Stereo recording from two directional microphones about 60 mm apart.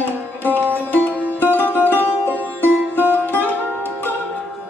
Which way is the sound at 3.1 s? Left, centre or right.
Left.